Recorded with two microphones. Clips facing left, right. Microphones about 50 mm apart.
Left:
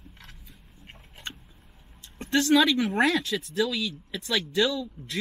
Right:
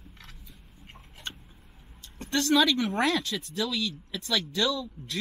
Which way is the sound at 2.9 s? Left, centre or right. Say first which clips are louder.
Left 3 dB; centre.